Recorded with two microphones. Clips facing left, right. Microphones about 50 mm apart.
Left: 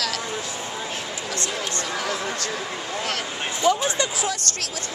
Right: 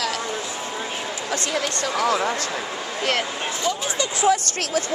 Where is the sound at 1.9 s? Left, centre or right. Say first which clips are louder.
Right 8 dB; right.